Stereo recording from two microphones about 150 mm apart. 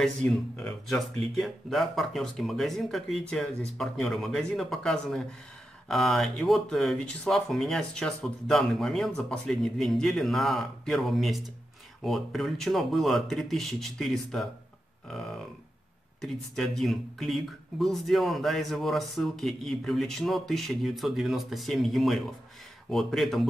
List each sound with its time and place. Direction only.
0.0 s speech: 5° left (ahead or behind)
16.2 s speech: centre (ahead or behind)